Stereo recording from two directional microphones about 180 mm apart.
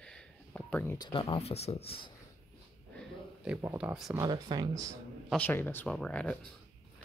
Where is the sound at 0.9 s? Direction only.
30° left (ahead or behind).